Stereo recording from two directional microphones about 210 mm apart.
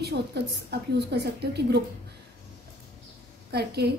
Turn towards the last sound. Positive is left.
turn(degrees=-50)  # may be behind; listen again after turning